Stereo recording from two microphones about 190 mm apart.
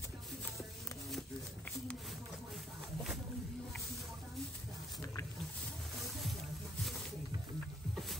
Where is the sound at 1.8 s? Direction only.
Centre (ahead or behind).